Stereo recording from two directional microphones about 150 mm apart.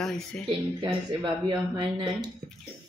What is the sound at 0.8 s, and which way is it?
Speech, 30° right (ahead or behind).